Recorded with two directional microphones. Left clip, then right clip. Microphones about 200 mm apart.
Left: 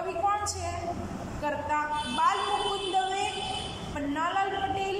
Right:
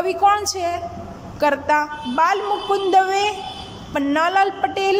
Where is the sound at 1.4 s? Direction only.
50° right (ahead or behind).